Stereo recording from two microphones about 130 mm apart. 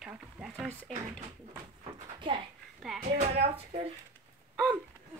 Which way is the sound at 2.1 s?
40° right (ahead or behind).